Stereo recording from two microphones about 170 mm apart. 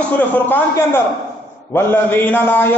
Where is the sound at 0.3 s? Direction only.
10° left (ahead or behind).